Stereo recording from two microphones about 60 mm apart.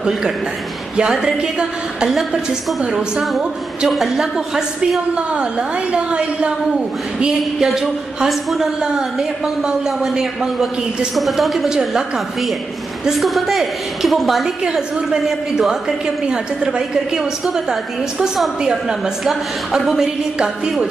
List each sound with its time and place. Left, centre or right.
1.1 s a woman's voice: centre
14.6 s a woman's voice: centre